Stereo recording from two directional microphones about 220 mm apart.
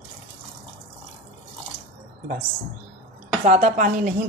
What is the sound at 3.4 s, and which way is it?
Speech, 35° right (ahead or behind).